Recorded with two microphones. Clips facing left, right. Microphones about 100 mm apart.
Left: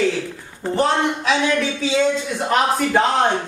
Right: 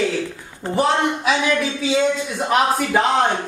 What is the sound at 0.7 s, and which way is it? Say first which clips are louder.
Speech: even; 5° right (ahead or behind).